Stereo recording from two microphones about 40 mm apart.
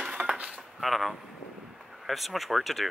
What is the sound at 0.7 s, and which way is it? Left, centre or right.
Speech, centre.